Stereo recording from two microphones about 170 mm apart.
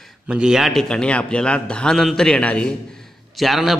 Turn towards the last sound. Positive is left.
turn(degrees=0)  # may be behind; listen again after turning